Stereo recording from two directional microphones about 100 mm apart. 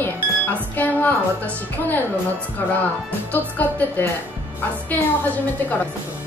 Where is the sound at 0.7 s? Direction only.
15° left (ahead or behind).